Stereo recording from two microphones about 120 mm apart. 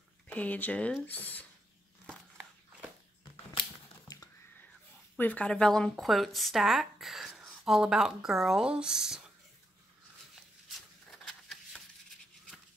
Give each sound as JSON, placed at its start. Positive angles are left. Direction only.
{"t": 0.3, "sound": "speech", "side_deg": 15}
{"t": 5.1, "sound": "speech", "side_deg": 15}
{"t": 10.7, "sound": "a sound", "side_deg": 0}